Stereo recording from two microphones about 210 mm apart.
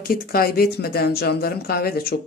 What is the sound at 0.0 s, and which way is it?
Speech, 45° left (ahead or behind).